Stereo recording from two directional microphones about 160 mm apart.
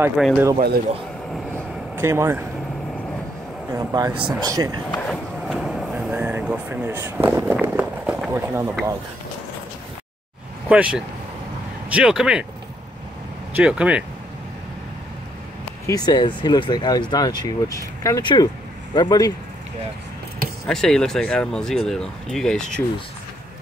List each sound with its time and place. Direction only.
0.2 s speech: 5° right (ahead or behind)
2.0 s speech: 15° right (ahead or behind)
3.7 s speech: 25° right (ahead or behind)
4.9 s vehicle: 5° left (ahead or behind)
8.3 s speech: 15° right (ahead or behind)
10.7 s speech: 5° right (ahead or behind)
13.6 s speech: 5° right (ahead or behind)
15.9 s speech: 25° left (ahead or behind)
20.6 s speech: 5° left (ahead or behind)